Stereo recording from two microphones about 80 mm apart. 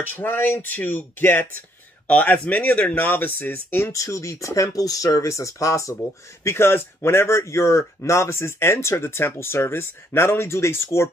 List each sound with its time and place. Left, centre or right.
0.1 s speech: left
3.9 s speech: left
6.4 s speech: left